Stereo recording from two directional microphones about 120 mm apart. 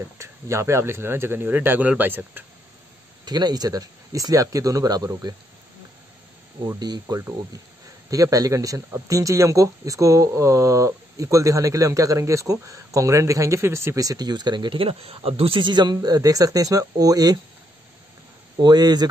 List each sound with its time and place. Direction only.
0.2 s speech: 25° right (ahead or behind)
3.3 s speech: 35° right (ahead or behind)
6.6 s speech: 35° right (ahead or behind)
18.6 s speech: 35° right (ahead or behind)